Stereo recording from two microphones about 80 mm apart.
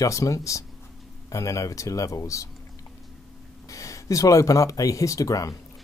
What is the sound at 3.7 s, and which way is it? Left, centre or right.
Speech, left.